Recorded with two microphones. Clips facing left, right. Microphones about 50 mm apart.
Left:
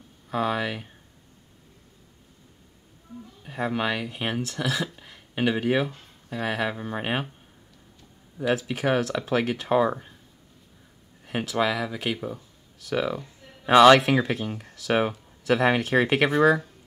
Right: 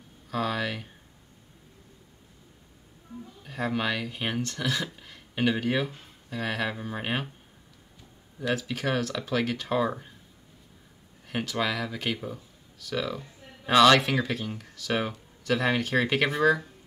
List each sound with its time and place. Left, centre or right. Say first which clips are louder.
0.3 s speech: left 3 dB; centre
3.4 s speech: left 2 dB; centre
4.9 s a sound: left 2 dB; centre
6.3 s speech: left 3 dB; centre
8.6 s speech: left 4 dB; centre
11.2 s speech: left 4 dB; centre
12.8 s speech: left 4 dB; centre